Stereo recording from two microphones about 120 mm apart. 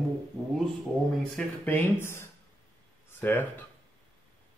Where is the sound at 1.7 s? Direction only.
15° left (ahead or behind).